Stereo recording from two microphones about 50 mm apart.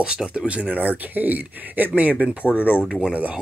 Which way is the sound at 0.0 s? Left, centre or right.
Centre.